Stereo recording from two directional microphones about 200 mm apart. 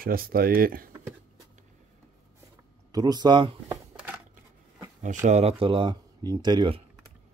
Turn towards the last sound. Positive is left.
turn(degrees=-25)  # may be behind; listen again after turning